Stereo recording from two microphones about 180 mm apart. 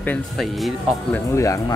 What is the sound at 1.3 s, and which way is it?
Speech, 15° left (ahead or behind).